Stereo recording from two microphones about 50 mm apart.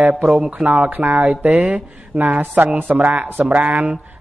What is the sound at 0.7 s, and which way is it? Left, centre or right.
Speech, right.